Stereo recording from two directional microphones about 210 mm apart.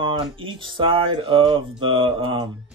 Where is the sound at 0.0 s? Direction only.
25° right (ahead or behind).